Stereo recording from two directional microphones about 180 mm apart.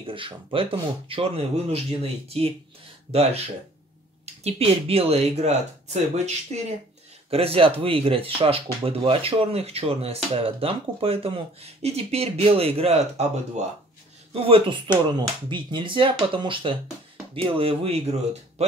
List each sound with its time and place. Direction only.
0.0 s speech: 30° right (ahead or behind)